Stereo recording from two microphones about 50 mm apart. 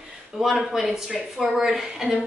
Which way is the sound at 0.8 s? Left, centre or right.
Centre.